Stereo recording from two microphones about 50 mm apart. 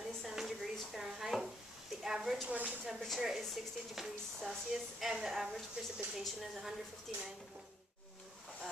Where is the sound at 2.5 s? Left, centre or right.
Right.